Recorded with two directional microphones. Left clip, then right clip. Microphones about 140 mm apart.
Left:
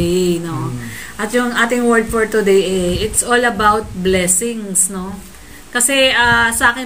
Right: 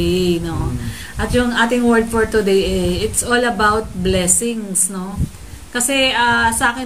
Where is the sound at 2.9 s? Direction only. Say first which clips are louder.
Left 2 dB; 30° right (ahead or behind).